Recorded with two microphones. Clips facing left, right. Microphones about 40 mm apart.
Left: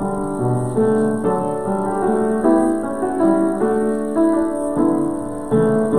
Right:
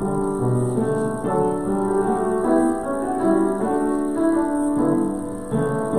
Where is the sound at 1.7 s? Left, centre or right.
Centre.